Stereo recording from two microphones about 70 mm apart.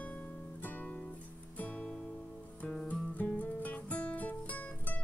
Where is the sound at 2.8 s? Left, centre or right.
Left.